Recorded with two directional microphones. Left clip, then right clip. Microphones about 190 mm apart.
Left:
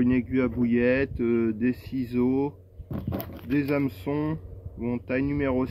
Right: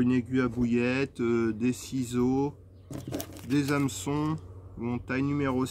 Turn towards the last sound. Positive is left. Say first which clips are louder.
# left 3 dB
turn(degrees=-25)  # may be behind; listen again after turning